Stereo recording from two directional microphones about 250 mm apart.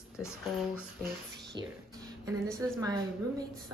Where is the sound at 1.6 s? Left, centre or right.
Centre.